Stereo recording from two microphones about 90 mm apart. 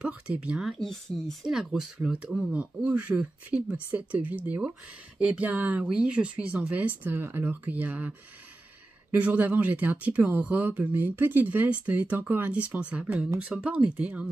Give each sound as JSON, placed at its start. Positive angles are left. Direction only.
{"t": 0.0, "sound": "speech", "side_deg": -15}
{"t": 0.8, "sound": "speech", "side_deg": 5}